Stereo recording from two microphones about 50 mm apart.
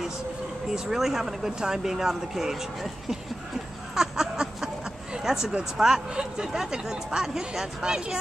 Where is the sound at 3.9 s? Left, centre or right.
Centre.